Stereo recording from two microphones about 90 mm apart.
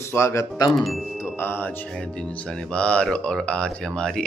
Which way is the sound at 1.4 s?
25° left (ahead or behind).